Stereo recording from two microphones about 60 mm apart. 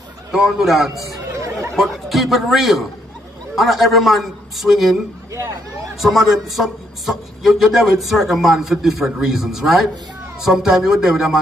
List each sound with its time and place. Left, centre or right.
0.3 s a man's voice: centre
1.3 s chatter: right
1.8 s a man's voice: centre
5.9 s a man's voice: centre